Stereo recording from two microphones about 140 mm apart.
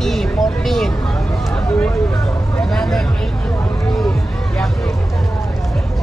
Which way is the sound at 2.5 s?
5° left (ahead or behind).